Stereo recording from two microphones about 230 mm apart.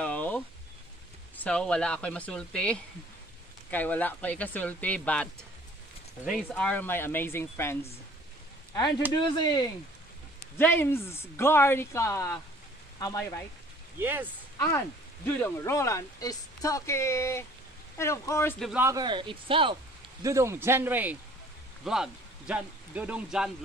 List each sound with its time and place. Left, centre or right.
0.0 s a sound: centre
1.3 s speech: centre
8.7 s speech: centre
13.9 s speech: centre
15.2 s speech: centre
18.7 s speech: centre